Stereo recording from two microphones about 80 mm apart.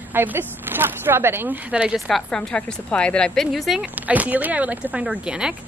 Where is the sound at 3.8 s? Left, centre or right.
Centre.